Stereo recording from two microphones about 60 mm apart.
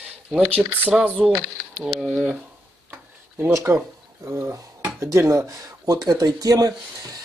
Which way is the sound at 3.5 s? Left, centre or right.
Right.